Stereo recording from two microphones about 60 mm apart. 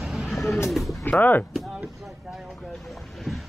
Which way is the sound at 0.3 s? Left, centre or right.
Centre.